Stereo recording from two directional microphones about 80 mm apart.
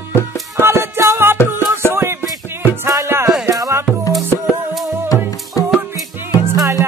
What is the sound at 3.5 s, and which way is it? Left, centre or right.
Music, right.